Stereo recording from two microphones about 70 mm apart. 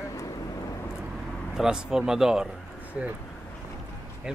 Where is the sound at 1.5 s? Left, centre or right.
Centre.